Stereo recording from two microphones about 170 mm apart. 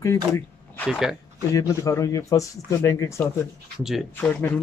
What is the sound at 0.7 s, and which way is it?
Speech, centre (ahead or behind).